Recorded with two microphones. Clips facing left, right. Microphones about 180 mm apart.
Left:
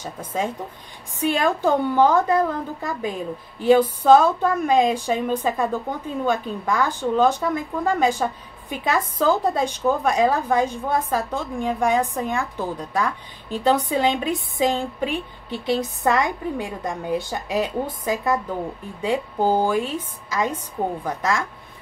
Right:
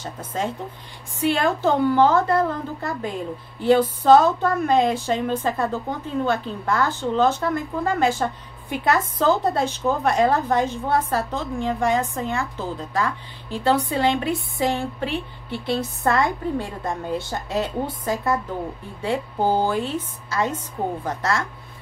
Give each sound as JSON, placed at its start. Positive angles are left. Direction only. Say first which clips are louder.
{"t": 0.0, "sound": "speech", "louder": "left 1 dB", "side_deg": 10}